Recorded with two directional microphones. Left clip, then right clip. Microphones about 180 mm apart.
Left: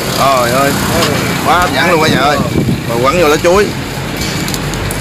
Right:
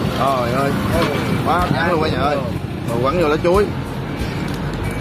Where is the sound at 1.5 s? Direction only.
10° left (ahead or behind).